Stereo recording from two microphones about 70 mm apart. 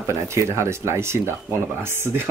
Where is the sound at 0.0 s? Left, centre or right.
Right.